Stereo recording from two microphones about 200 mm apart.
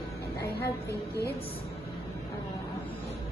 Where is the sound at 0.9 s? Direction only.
50° left (ahead or behind).